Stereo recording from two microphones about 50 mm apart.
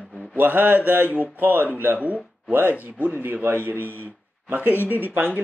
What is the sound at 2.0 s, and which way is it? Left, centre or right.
A man's voice, right.